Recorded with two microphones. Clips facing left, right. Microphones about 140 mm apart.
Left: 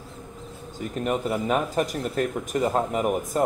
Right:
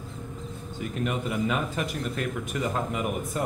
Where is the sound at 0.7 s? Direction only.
40° left (ahead or behind).